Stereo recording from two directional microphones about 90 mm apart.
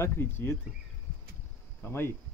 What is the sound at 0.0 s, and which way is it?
Speech, 25° left (ahead or behind).